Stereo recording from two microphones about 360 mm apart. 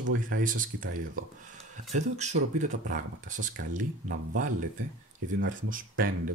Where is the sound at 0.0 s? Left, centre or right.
Right.